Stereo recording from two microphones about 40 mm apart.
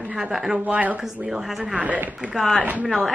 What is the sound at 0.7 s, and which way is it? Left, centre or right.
Speech, right.